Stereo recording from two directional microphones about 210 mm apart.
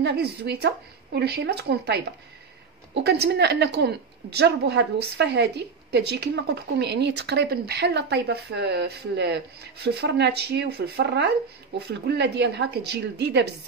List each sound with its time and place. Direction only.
0.0 s speech: 50° right (ahead or behind)